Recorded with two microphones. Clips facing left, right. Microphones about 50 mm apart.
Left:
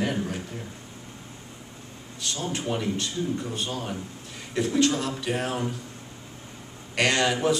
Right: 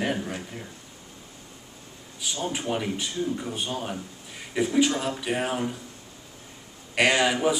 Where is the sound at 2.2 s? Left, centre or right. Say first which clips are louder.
Right 1 dB; centre.